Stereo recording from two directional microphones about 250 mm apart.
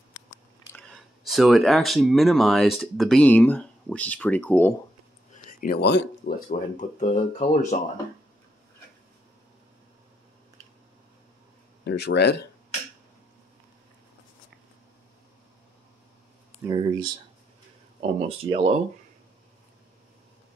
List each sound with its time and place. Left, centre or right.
0.7 s speech: centre
5.3 s speech: left
11.8 s speech: left
16.6 s speech: centre